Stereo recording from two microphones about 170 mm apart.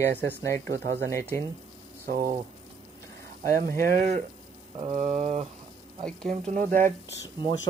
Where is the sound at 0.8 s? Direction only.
75° right (ahead or behind).